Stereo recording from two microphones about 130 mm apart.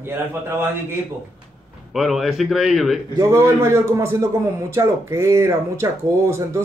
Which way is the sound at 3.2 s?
20° right (ahead or behind).